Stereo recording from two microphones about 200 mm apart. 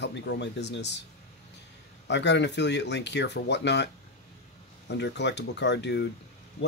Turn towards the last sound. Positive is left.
turn(degrees=60)  # may be behind; listen again after turning